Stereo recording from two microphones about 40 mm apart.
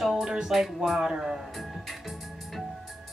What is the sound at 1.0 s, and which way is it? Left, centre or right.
Speech, centre.